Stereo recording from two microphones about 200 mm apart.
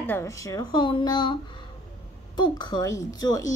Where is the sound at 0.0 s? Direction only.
10° left (ahead or behind).